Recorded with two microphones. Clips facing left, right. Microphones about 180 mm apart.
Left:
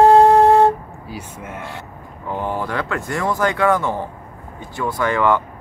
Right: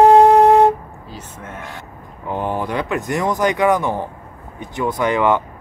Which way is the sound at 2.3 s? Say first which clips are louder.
Right 2 dB; 15° right (ahead or behind).